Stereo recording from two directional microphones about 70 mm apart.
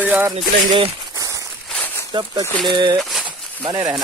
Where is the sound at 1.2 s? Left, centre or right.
Right.